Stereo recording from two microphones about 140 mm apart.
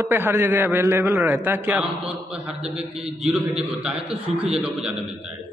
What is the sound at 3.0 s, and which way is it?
A man's voice, centre (ahead or behind).